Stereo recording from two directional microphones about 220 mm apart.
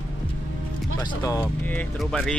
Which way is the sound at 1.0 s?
20° left (ahead or behind).